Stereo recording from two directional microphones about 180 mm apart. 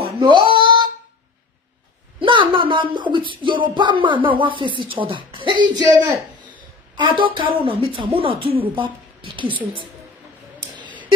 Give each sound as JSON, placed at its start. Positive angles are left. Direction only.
{"t": 0.2, "sound": "a sound", "side_deg": -25}
{"t": 2.1, "sound": "speech", "side_deg": -30}
{"t": 7.0, "sound": "speech", "side_deg": -30}